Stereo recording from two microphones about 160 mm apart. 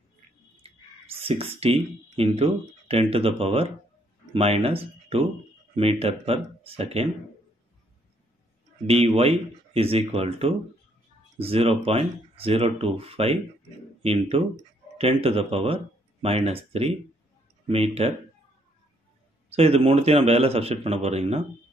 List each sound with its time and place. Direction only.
1.2 s speech: 40° right (ahead or behind)
8.8 s speech: 35° right (ahead or behind)
17.6 s speech: 40° right (ahead or behind)
19.5 s speech: 40° right (ahead or behind)